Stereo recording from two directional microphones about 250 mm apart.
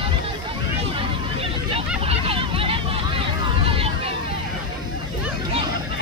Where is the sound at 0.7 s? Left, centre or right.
Right.